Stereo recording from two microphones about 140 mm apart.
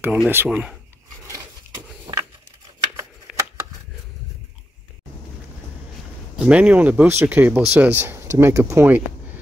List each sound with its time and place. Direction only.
0.0 s speech: 10° right (ahead or behind)
1.2 s a sound: 20° right (ahead or behind)
3.3 s shuffling cards: 10° right (ahead or behind)
6.3 s speech: 10° right (ahead or behind)